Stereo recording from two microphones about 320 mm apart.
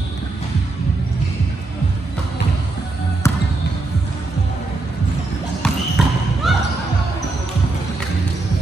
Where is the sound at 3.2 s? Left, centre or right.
Centre.